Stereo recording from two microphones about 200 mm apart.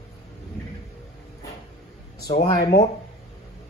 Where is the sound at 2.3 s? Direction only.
20° left (ahead or behind).